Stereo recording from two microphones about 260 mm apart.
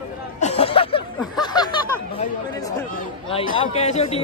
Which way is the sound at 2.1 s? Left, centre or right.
Centre.